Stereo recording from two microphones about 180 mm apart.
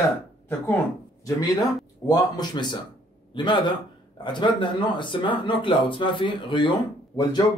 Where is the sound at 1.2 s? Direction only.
25° left (ahead or behind).